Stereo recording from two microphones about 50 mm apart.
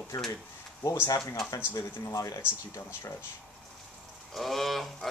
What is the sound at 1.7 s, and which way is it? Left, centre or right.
Speech, left.